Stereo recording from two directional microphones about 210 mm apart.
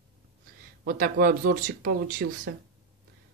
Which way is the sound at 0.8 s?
45° right (ahead or behind).